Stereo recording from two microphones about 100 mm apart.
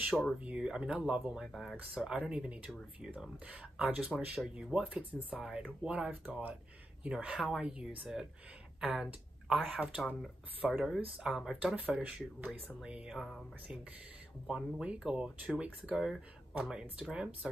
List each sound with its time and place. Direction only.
0.0 s speech: 5° right (ahead or behind)
14.5 s speech: 10° right (ahead or behind)